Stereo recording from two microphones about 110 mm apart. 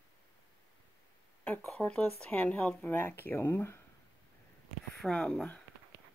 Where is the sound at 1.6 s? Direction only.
10° left (ahead or behind).